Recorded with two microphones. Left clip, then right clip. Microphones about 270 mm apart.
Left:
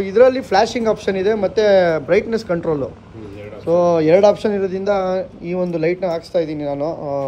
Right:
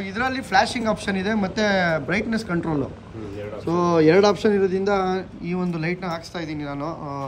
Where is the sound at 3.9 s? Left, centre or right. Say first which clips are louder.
Even; centre.